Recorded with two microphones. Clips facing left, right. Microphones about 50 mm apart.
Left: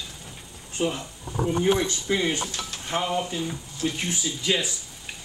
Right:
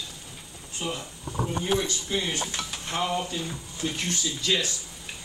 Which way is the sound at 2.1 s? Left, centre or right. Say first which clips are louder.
Left 5 dB; left.